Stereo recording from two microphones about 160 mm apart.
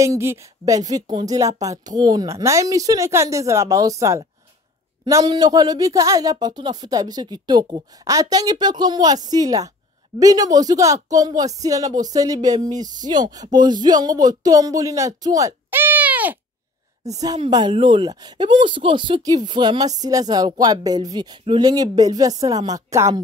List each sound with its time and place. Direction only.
0.0 s speech: 20° right (ahead or behind)
17.0 s speech: 20° right (ahead or behind)